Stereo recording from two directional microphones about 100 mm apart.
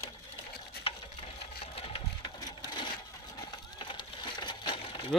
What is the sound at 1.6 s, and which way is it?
Sewing machine, 70° left (ahead or behind).